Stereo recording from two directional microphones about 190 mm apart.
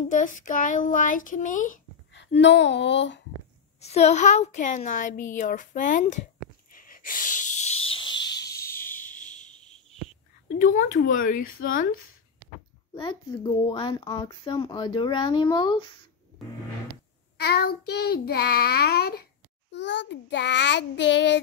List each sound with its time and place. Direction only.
0.0 s a child's voice: 40° left (ahead or behind)
2.1 s a child's voice: 70° left (ahead or behind)
3.8 s speech: 35° left (ahead or behind)
6.9 s wheeze: 45° left (ahead or behind); by 8.2 s 25° left (ahead or behind)
8.6 s fire alarm: 10° left (ahead or behind)
10.6 s a child's voice: 45° left (ahead or behind)
12.9 s a child's voice: 20° left (ahead or behind)
17.4 s child singing: 55° left (ahead or behind)
19.7 s a child's voice: 70° left (ahead or behind)